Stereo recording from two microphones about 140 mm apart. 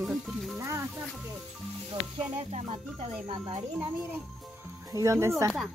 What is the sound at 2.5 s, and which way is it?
Speech, 50° right (ahead or behind).